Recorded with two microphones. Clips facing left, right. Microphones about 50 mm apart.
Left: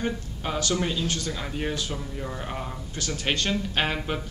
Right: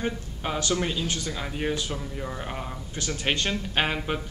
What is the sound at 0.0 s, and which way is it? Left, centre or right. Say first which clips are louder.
A woman's voice: even; centre.